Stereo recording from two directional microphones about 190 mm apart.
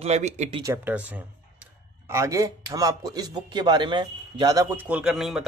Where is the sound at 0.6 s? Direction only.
15° right (ahead or behind).